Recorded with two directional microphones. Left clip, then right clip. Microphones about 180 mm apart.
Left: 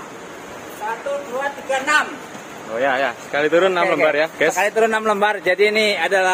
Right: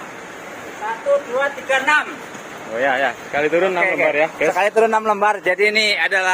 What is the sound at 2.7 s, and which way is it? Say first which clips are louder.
Speech: right 1 dB; 10° left (ahead or behind).